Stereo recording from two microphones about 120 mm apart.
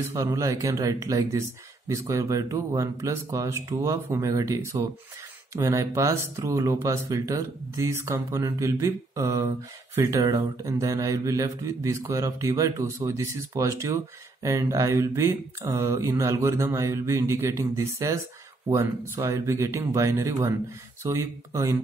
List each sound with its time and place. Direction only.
0.1 s speech: 25° right (ahead or behind)